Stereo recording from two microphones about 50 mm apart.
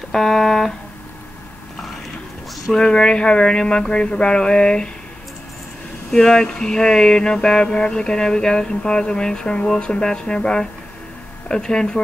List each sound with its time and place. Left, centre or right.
0.1 s music: centre
2.7 s speech: centre
6.1 s speech: centre